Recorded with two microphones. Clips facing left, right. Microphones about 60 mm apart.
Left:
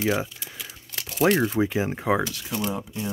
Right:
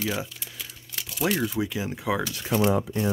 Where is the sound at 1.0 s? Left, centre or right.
Left.